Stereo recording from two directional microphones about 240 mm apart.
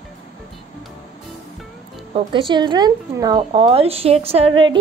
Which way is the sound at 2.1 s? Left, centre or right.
Right.